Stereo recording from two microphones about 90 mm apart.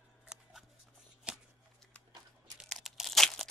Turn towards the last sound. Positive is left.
turn(degrees=5)  # may be behind; listen again after turning